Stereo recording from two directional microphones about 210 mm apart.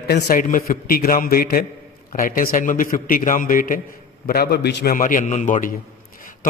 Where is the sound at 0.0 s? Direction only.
45° left (ahead or behind).